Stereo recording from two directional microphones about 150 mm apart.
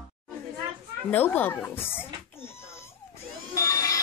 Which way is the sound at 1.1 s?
10° left (ahead or behind).